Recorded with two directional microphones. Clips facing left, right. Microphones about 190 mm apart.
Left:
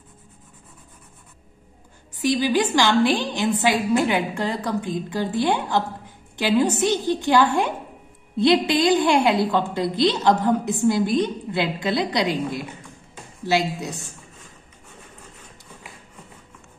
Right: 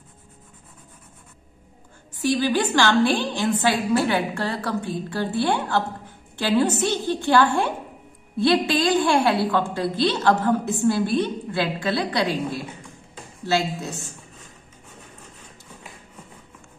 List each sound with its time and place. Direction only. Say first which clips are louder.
2.1 s a woman's voice: left 1 dB; 15° left (ahead or behind)